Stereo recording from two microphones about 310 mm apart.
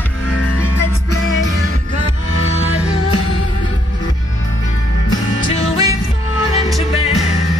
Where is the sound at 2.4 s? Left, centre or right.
Centre.